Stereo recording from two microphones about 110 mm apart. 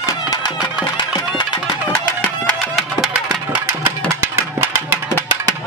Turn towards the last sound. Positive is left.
turn(degrees=-20)  # may be behind; listen again after turning